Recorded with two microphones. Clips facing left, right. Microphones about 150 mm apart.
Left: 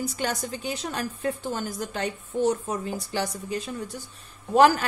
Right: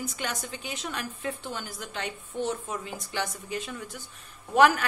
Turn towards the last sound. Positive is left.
turn(degrees=35)  # may be behind; listen again after turning